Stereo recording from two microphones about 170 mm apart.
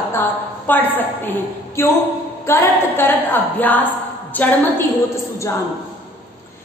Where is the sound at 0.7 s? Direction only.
10° left (ahead or behind).